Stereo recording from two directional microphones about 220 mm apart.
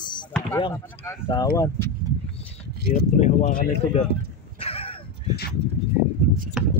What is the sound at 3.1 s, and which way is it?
Speech, 35° left (ahead or behind).